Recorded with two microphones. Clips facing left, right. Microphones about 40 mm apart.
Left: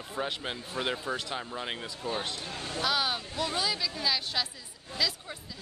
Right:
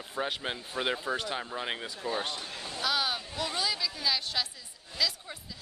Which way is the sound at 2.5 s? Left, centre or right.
Left.